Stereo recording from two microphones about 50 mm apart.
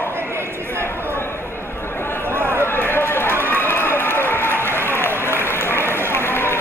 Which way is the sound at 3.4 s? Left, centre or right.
Left.